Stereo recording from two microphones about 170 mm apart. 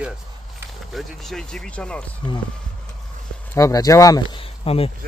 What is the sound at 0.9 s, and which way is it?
Speech, centre (ahead or behind).